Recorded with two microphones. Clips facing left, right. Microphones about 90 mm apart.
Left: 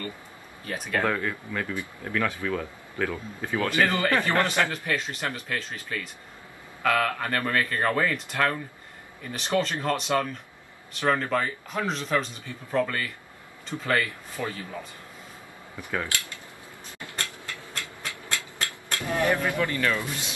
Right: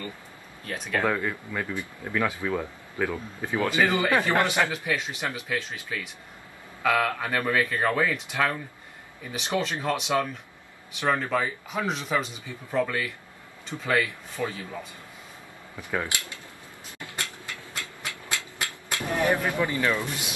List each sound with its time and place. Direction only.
0.7 s speech: 5° left (ahead or behind)
15.9 s speech: 15° right (ahead or behind)
18.9 s speech: 15° right (ahead or behind)